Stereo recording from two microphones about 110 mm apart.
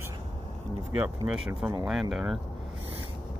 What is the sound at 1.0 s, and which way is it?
Speech, 10° right (ahead or behind).